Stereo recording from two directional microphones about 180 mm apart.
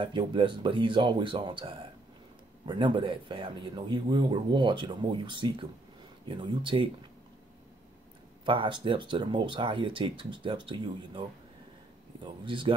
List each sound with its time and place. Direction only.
0.0 s speech: 25° right (ahead or behind)
8.5 s speech: 30° right (ahead or behind)
12.4 s speech: 30° right (ahead or behind)